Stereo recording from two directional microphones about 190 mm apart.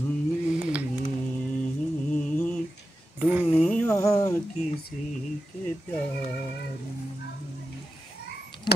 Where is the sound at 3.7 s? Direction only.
5° left (ahead or behind).